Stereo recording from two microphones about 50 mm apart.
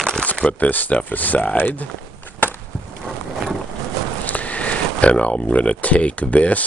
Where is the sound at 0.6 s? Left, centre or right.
Left.